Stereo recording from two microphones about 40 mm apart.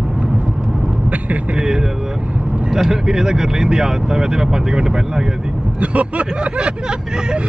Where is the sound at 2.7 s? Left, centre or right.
Centre.